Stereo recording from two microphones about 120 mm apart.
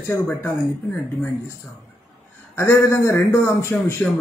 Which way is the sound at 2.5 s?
20° left (ahead or behind).